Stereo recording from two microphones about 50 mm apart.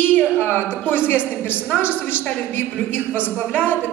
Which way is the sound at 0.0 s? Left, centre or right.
Left.